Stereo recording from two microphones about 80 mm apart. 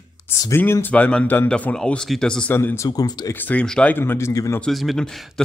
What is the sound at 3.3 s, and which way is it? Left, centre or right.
Speech, left.